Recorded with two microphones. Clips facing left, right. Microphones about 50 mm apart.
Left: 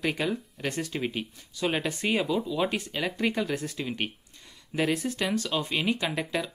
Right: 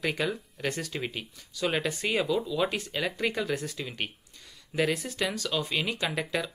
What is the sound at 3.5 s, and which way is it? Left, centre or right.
Speech, left.